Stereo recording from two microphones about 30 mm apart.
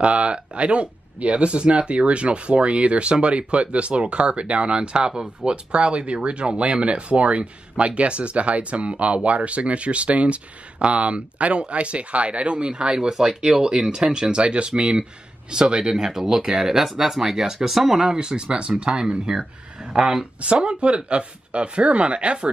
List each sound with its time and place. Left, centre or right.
0.0 s speech: right
12.9 s speech: right
14.3 s speech: right
15.9 s speech: centre
18.0 s speech: right